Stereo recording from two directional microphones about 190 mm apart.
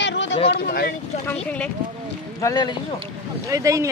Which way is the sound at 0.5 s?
55° left (ahead or behind).